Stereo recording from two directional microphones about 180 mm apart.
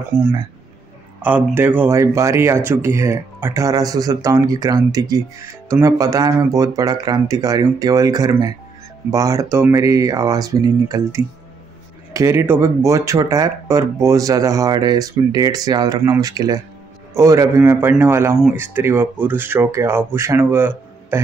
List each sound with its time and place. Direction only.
0.1 s speech: 15° right (ahead or behind)